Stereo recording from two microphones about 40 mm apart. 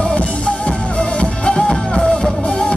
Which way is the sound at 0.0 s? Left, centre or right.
Left.